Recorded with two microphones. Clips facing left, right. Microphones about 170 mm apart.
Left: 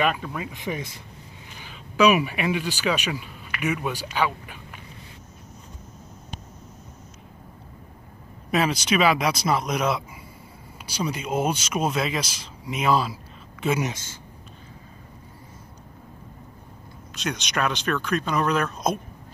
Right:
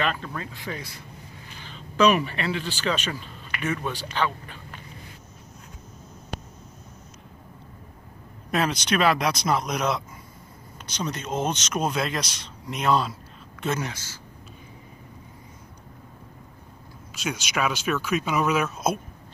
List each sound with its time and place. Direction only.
0.0 s speech: 10° left (ahead or behind)
1.6 s speech: 10° left (ahead or behind)
8.5 s speech: 5° left (ahead or behind)
13.7 s speech: 20° left (ahead or behind)
17.1 s speech: 5° right (ahead or behind)